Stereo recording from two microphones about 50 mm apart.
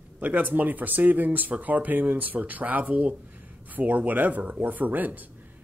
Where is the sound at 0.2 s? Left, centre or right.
Right.